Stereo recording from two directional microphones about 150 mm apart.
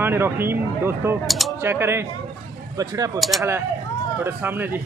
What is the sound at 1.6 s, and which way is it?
Speech, 15° right (ahead or behind).